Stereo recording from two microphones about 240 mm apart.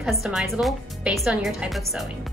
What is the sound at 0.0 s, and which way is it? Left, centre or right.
A woman's voice, centre.